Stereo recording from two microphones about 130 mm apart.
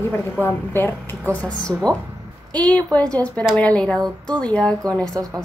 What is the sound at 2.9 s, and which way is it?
A woman's voice, 10° left (ahead or behind).